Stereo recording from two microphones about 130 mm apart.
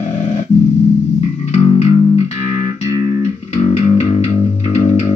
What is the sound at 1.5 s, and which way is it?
Music, 55° left (ahead or behind).